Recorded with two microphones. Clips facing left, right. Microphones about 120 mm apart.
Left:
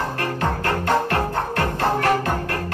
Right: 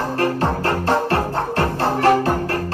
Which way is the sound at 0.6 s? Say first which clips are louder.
Even; 30° right (ahead or behind).